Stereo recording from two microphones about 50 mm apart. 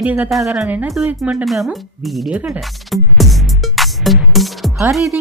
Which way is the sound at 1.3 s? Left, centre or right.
Centre.